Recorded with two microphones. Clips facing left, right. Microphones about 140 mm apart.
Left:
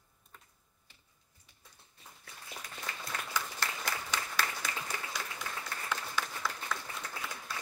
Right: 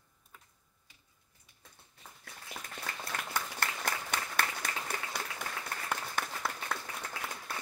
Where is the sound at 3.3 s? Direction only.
55° right (ahead or behind).